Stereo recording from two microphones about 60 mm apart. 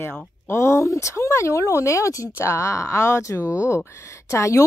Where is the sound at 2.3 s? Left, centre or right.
Left.